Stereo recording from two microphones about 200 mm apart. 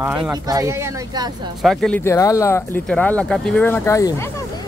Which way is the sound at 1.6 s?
Centre (ahead or behind).